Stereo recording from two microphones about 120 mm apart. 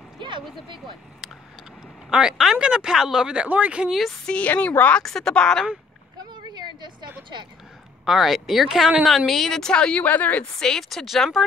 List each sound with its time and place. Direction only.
2.0 s speech: 5° right (ahead or behind)
6.3 s a sound: 35° right (ahead or behind)
8.0 s speech: centre (ahead or behind)